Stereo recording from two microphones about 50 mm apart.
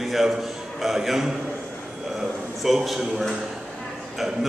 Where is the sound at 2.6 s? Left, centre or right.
Centre.